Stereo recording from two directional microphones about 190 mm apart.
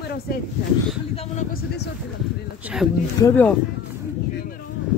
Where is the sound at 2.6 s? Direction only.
5° right (ahead or behind).